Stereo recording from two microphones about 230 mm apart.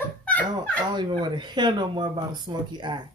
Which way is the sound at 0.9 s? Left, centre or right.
Centre.